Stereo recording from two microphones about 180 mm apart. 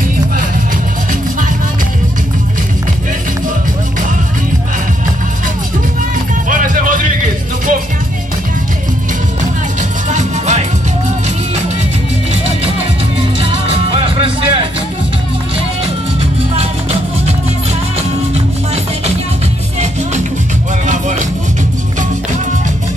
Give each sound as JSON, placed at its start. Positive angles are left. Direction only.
{"t": 6.5, "sound": "music", "side_deg": -50}
{"t": 10.0, "sound": "music", "side_deg": -40}
{"t": 13.4, "sound": "music", "side_deg": -30}